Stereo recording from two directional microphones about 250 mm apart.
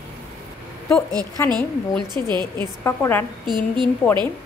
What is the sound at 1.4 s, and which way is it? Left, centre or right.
Speech, centre.